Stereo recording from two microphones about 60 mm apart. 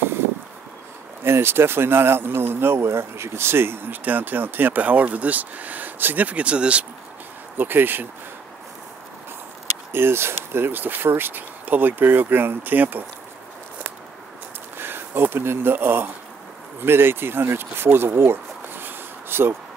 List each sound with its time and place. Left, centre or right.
1.2 s speech: right
4.0 s speech: right
7.5 s speech: right
9.9 s speech: right
14.8 s speech: right